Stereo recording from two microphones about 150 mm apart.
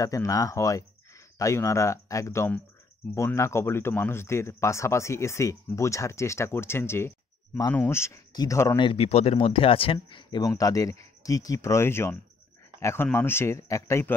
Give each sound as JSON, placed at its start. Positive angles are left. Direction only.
{"t": 0.0, "sound": "speech", "side_deg": 20}
{"t": 8.7, "sound": "speech", "side_deg": 35}